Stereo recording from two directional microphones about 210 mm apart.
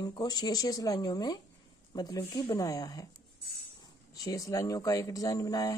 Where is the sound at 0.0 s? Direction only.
20° left (ahead or behind).